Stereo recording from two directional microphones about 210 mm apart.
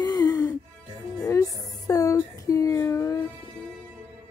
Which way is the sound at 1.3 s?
15° left (ahead or behind).